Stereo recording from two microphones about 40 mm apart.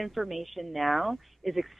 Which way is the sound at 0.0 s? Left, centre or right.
Centre.